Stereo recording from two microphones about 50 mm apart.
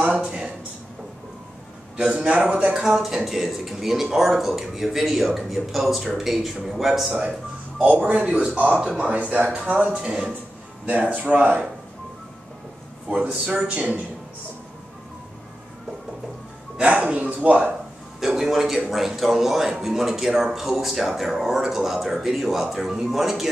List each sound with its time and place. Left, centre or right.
0.2 s speech: centre
2.0 s a man's voice: right
2.8 s a man's voice: centre
7.8 s a man's voice: right
8.3 s speech: right
9.9 s a man's voice: centre
11.1 s speech: right
13.1 s speech: right
16.8 s speech: right
18.2 s a man's voice: centre